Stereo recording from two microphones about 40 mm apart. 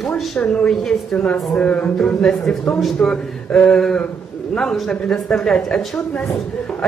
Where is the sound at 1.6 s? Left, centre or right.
Left.